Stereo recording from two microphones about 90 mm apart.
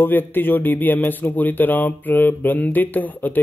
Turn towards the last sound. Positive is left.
turn(degrees=20)  # may be behind; listen again after turning